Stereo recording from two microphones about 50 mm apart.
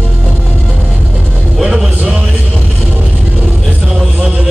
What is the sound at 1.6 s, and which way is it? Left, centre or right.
Music, centre.